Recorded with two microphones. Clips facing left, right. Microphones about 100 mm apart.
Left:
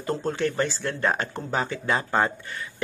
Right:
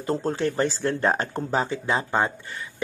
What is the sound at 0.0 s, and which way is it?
Speech, 30° right (ahead or behind).